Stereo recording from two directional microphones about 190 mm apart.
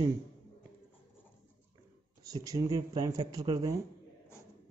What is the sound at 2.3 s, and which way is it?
Speech, 20° right (ahead or behind).